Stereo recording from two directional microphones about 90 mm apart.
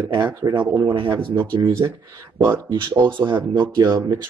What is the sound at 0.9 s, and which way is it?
Speech, 55° right (ahead or behind).